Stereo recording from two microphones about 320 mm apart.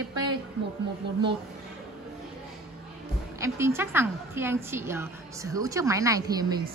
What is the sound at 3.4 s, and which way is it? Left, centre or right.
A woman's voice, centre.